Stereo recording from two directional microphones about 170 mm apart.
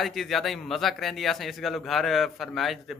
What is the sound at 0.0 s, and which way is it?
A man's voice, centre (ahead or behind).